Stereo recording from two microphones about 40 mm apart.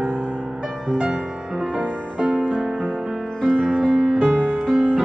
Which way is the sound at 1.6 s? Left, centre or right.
Right.